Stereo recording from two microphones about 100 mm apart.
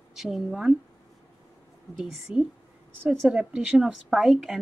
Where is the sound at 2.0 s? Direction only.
5° right (ahead or behind).